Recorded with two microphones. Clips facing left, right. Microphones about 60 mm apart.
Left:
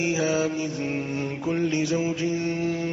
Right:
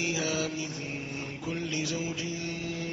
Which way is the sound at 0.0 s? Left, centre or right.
Left.